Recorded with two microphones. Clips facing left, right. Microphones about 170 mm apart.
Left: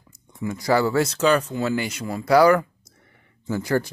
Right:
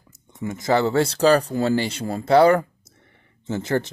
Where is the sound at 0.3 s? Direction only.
20° right (ahead or behind).